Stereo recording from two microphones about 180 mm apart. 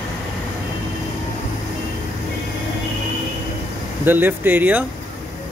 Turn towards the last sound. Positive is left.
turn(degrees=-10)  # may be behind; listen again after turning